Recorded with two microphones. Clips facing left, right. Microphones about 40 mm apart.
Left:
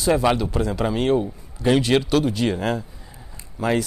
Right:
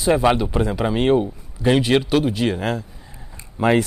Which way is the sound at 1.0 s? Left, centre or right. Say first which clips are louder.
Right 4 dB; right.